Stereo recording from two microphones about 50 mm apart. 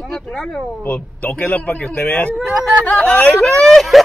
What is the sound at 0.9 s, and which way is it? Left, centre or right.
A man's voice, left.